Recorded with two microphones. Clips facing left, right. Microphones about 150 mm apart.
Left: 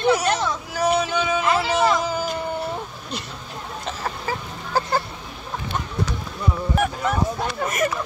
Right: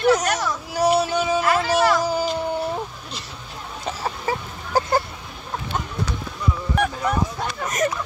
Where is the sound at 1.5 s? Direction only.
20° left (ahead or behind).